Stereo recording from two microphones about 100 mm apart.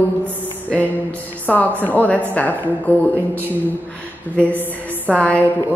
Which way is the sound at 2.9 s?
25° right (ahead or behind).